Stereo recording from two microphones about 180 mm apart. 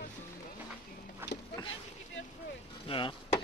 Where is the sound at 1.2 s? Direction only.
10° right (ahead or behind).